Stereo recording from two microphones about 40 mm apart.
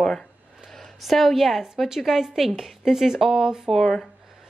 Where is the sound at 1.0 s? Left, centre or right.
Centre.